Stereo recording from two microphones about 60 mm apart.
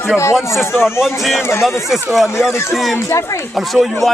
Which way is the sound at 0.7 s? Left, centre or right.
Left.